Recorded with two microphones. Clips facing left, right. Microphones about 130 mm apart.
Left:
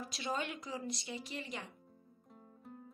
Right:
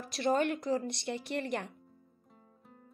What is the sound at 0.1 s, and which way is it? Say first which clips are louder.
Speech: right 12 dB; 60° right (ahead or behind).